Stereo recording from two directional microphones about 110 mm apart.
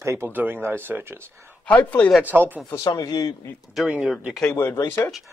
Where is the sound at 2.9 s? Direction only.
35° left (ahead or behind).